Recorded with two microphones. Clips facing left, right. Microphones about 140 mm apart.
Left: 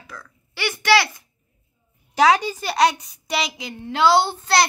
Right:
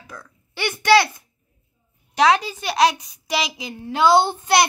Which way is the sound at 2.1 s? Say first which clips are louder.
Left 1 dB; centre (ahead or behind).